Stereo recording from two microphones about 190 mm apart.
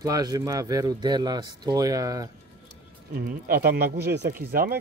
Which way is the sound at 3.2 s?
45° right (ahead or behind).